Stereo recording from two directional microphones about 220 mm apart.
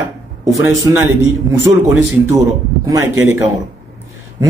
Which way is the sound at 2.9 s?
15° right (ahead or behind).